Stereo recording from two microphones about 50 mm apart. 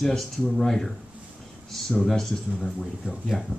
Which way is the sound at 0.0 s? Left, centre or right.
Centre.